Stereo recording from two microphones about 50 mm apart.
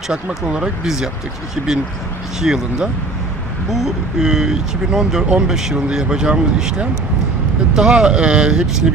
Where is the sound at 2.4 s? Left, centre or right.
Centre.